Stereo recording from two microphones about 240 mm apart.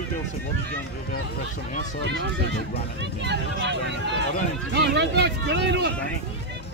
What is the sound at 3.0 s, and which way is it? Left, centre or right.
Speech, right.